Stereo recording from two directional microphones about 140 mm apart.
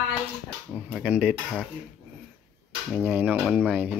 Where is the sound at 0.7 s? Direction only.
5° right (ahead or behind).